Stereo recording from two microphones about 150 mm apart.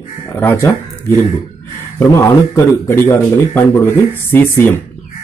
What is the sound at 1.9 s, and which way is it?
Speech, 20° left (ahead or behind).